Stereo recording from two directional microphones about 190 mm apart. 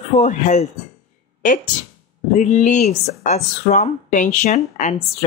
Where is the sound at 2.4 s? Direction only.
40° left (ahead or behind).